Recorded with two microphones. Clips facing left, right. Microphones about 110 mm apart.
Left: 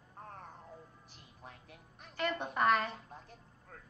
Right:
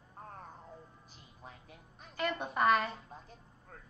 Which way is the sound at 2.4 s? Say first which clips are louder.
Right 2 dB; centre (ahead or behind).